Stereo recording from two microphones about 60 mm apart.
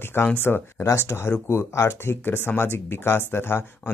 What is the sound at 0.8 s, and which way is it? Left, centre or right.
Speech, left.